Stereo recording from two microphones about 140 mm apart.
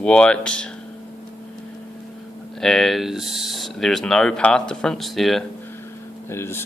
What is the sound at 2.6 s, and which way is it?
Speech, 5° left (ahead or behind).